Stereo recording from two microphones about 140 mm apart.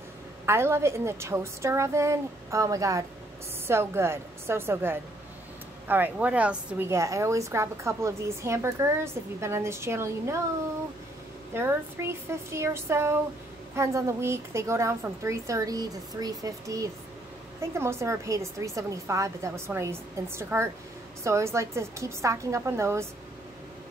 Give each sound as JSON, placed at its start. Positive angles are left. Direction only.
{"t": 0.5, "sound": "a woman's voice", "side_deg": -20}
{"t": 6.9, "sound": "a woman's voice", "side_deg": -20}
{"t": 11.5, "sound": "a woman's voice", "side_deg": -15}